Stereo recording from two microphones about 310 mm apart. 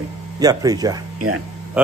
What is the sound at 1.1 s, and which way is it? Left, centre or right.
Speech, right.